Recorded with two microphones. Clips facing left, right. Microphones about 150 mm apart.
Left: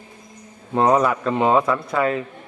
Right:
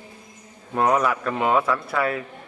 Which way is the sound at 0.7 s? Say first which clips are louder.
Left 3 dB; 30° left (ahead or behind).